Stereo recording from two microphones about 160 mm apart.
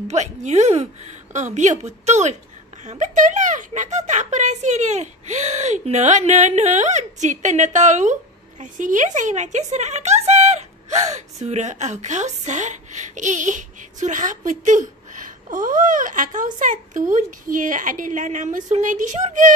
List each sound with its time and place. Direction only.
0.1 s speech: 45° right (ahead or behind)